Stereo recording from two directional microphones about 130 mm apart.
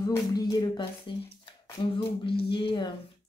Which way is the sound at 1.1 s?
40° left (ahead or behind).